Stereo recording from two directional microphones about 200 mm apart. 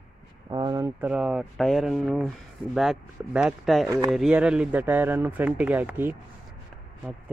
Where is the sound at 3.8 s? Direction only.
15° right (ahead or behind).